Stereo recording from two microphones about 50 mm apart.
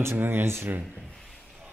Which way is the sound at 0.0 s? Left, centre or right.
Right.